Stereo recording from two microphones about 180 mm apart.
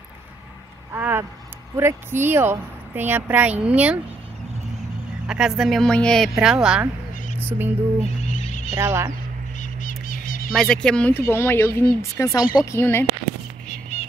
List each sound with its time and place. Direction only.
0.9 s speech: 10° right (ahead or behind)
5.2 s speech: 5° right (ahead or behind)
8.0 s neigh: 40° left (ahead or behind)
8.7 s speech: 15° right (ahead or behind)
9.6 s bird: 45° left (ahead or behind)
10.5 s speech: centre (ahead or behind)